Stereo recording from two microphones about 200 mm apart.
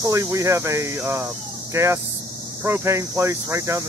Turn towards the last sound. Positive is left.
turn(degrees=-15)  # may be behind; listen again after turning